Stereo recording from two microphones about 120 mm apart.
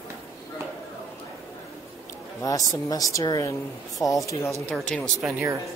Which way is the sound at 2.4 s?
30° left (ahead or behind).